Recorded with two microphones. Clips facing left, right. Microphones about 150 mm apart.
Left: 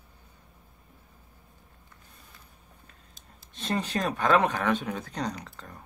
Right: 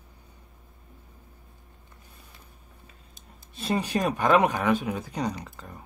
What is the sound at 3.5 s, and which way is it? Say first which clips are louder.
Speech: right 3 dB; 10° right (ahead or behind).